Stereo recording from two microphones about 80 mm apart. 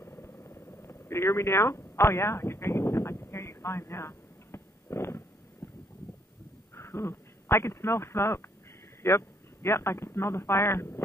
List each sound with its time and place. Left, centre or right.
0.0 s vehicle: left
5.6 s a sound: left
6.7 s speech: left